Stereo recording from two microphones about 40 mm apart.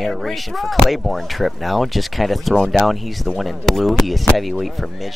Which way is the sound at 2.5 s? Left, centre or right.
Centre.